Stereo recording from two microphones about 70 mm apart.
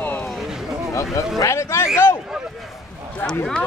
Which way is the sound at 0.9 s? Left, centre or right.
Left.